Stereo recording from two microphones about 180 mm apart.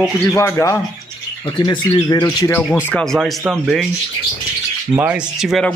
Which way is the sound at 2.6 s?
5° right (ahead or behind).